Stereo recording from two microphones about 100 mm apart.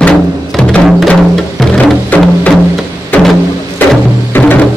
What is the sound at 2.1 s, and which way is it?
Music, 15° left (ahead or behind).